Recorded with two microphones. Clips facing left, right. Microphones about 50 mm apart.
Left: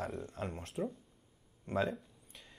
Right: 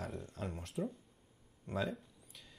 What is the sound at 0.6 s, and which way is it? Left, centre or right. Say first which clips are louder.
Speech: left 1 dB; centre.